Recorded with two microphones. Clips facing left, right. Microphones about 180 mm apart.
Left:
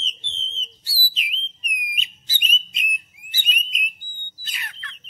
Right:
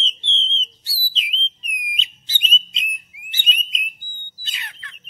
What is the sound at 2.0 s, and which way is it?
Bird, 25° right (ahead or behind).